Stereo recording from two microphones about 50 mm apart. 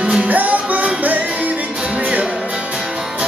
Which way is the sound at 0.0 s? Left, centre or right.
Right.